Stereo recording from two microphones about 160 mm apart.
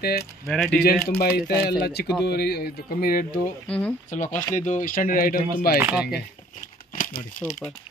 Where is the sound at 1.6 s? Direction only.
85° left; by 3.5 s 60° left (ahead or behind).